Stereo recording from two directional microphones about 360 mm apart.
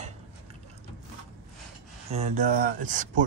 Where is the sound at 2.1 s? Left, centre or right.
Centre.